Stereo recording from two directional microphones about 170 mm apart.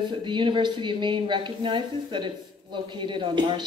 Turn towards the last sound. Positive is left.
turn(degrees=-25)  # may be behind; listen again after turning